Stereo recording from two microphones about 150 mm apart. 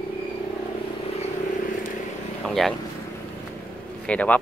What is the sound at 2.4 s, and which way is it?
Speech, centre (ahead or behind).